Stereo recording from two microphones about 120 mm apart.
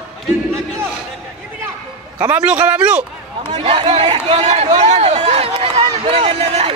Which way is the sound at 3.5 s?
55° right (ahead or behind).